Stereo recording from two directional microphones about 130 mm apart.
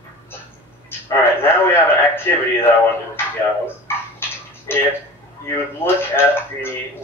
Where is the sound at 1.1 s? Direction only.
15° left (ahead or behind).